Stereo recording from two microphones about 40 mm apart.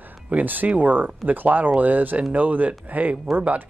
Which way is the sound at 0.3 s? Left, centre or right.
Right.